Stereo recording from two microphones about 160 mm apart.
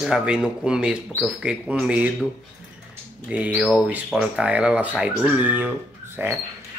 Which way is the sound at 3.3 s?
10° right (ahead or behind).